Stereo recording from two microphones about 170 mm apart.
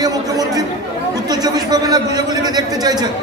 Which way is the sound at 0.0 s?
20° right (ahead or behind).